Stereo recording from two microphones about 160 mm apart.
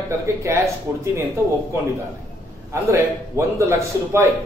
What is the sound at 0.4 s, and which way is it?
Speech, 15° right (ahead or behind).